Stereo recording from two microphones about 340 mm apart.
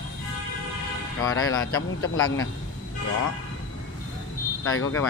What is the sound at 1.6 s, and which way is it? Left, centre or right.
Speech, left.